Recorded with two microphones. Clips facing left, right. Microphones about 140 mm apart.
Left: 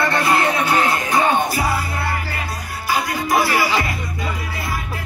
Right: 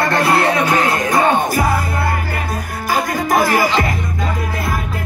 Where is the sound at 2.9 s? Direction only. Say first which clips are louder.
Right 3 dB; 45° right (ahead or behind).